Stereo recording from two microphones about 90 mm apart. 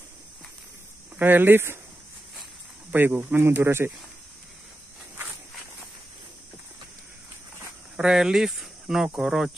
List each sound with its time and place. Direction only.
1.1 s speech: 20° right (ahead or behind)
2.9 s speech: 20° right (ahead or behind)
7.9 s speech: 5° right (ahead or behind)